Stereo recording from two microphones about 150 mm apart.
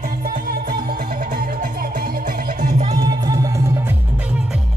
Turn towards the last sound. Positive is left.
turn(degrees=-20)  # may be behind; listen again after turning